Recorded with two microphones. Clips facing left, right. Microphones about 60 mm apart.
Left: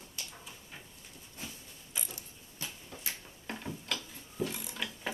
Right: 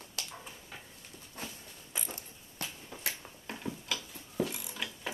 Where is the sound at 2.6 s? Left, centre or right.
Right.